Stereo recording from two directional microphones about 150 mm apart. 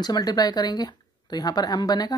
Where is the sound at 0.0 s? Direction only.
25° left (ahead or behind).